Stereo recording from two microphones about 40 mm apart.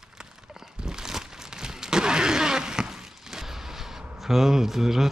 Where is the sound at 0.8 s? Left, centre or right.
Centre.